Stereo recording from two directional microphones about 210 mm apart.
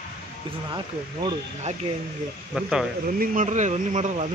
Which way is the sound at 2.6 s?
Centre (ahead or behind).